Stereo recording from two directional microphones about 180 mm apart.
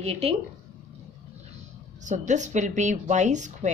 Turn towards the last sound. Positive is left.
turn(degrees=-40)  # may be behind; listen again after turning